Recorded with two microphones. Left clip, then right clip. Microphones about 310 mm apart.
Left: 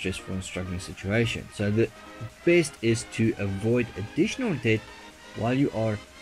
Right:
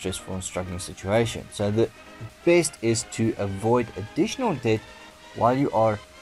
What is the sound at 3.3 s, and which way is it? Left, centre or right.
Speech, right.